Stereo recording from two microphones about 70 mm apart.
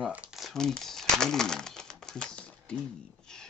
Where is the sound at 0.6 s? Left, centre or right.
Centre.